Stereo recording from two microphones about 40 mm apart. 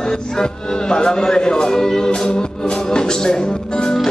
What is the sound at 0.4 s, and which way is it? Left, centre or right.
Speech, centre.